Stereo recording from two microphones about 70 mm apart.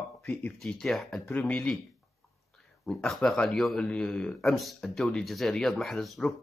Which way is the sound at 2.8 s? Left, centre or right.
Centre.